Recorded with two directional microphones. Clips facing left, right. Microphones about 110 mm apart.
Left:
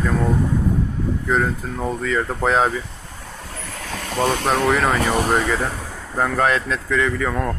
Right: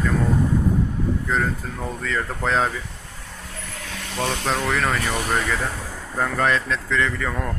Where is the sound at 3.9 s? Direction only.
45° left (ahead or behind).